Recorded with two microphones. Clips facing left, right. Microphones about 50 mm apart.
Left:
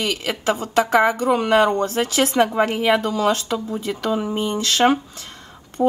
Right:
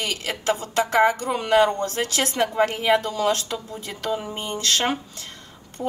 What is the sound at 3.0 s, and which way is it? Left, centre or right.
Speech, left.